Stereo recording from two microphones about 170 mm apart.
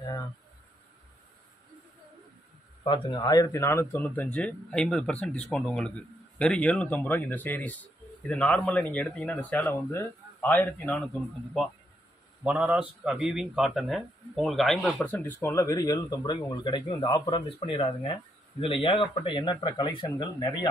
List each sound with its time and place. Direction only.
2.8 s a man's voice: 30° left (ahead or behind); by 11.1 s 10° left (ahead or behind)
12.4 s a man's voice: 5° right (ahead or behind); by 20.2 s 30° left (ahead or behind)